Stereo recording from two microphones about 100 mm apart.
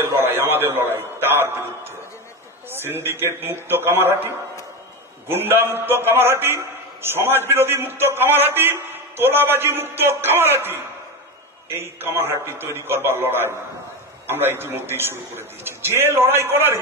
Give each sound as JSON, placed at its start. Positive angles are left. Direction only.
{"t": 0.0, "sound": "a sound", "side_deg": -20}
{"t": 2.7, "sound": "a man's voice", "side_deg": -25}
{"t": 5.3, "sound": "a man's voice", "side_deg": -20}